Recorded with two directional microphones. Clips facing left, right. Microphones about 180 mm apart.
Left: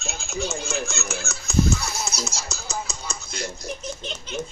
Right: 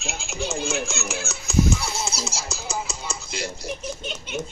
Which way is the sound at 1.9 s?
30° right (ahead or behind).